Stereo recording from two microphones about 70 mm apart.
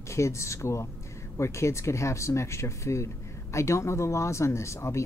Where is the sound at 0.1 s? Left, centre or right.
Left.